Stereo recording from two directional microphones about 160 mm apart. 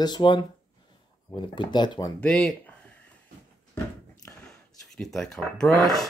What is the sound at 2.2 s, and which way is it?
Speech, 5° left (ahead or behind).